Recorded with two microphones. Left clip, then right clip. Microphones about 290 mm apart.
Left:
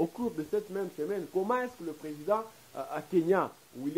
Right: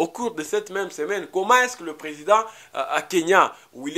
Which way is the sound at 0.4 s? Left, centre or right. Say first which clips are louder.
Right 7 dB; centre.